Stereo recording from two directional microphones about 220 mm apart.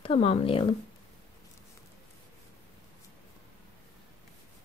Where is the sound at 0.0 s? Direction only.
25° left (ahead or behind).